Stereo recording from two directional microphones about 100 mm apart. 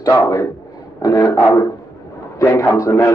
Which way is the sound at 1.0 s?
40° left (ahead or behind).